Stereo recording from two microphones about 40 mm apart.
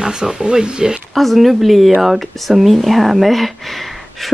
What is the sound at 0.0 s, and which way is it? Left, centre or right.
Speech, centre.